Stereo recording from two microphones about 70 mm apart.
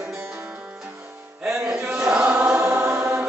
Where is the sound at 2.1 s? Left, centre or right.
Centre.